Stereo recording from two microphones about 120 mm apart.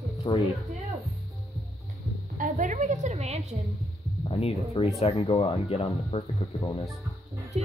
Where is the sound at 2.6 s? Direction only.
90° right; by 3.6 s 65° right (ahead or behind).